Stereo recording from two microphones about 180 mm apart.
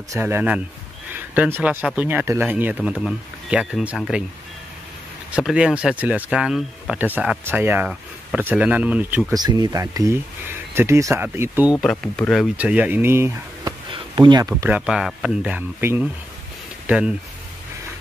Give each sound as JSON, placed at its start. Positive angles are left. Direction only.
{"t": 0.1, "sound": "speech", "side_deg": -10}
{"t": 5.3, "sound": "speech", "side_deg": -5}
{"t": 9.3, "sound": "speech", "side_deg": -20}
{"t": 11.8, "sound": "speech", "side_deg": 5}
{"t": 13.9, "sound": "speech", "side_deg": -25}
{"t": 14.9, "sound": "speech", "side_deg": 0}